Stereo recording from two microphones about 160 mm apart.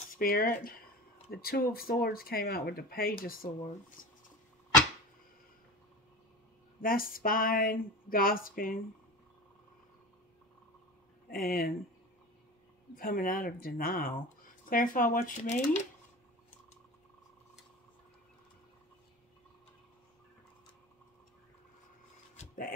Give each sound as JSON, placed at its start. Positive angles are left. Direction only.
{"t": 0.1, "sound": "speech", "side_deg": 65}
{"t": 6.8, "sound": "speech", "side_deg": 60}
{"t": 11.2, "sound": "speech", "side_deg": 65}
{"t": 12.9, "sound": "speech", "side_deg": 60}